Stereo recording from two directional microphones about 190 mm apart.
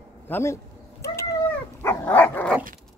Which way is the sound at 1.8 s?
15° left (ahead or behind).